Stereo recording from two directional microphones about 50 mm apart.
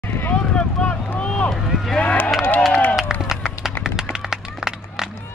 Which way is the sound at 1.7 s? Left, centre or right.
Centre.